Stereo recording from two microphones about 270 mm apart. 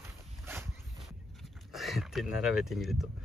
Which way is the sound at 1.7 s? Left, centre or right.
Centre.